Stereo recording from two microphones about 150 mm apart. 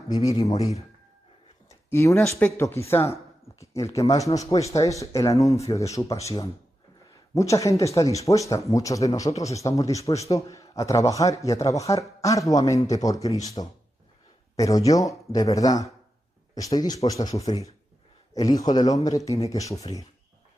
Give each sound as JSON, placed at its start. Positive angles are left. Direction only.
{"t": 0.1, "sound": "a man's voice", "side_deg": 25}
{"t": 1.7, "sound": "a sound", "side_deg": 20}
{"t": 2.4, "sound": "a man's voice", "side_deg": 15}
{"t": 14.6, "sound": "a man's voice", "side_deg": 20}